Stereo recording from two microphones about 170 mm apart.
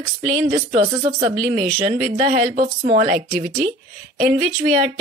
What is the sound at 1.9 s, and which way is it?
A woman's voice, 55° right (ahead or behind).